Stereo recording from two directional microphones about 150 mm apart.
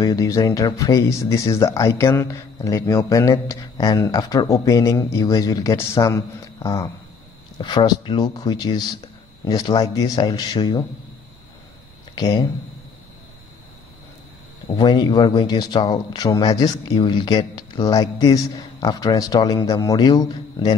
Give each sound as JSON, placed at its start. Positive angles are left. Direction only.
{"t": 0.0, "sound": "speech", "side_deg": 25}
{"t": 12.2, "sound": "speech", "side_deg": 25}
{"t": 14.8, "sound": "speech", "side_deg": 30}